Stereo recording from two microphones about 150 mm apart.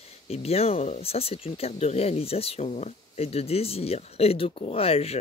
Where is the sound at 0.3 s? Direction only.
45° left (ahead or behind).